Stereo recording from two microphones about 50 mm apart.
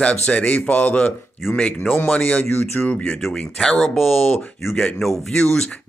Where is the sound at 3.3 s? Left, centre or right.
Centre.